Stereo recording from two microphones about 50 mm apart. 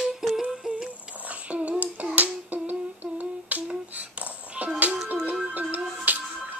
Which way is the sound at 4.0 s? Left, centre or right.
Right.